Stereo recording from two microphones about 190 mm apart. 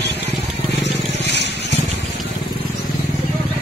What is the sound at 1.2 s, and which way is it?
Vehicle, 65° left (ahead or behind).